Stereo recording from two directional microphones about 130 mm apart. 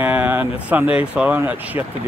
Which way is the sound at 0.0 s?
10° right (ahead or behind).